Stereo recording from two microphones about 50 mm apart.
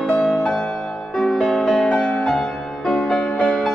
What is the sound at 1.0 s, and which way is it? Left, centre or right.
Music, centre.